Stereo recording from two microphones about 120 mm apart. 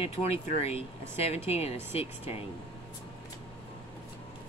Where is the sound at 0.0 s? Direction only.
60° left (ahead or behind).